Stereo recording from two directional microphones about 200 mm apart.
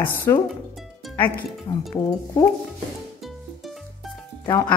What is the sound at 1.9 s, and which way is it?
Speech, 20° left (ahead or behind).